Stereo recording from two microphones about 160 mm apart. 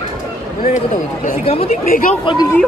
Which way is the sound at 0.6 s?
50° left (ahead or behind).